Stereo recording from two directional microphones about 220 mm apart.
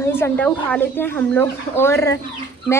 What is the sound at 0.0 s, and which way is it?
Speech, 10° left (ahead or behind).